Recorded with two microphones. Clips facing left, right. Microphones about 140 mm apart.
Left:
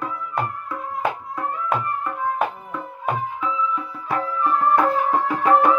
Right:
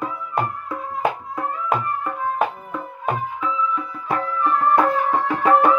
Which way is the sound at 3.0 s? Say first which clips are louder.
Even; 10° left (ahead or behind).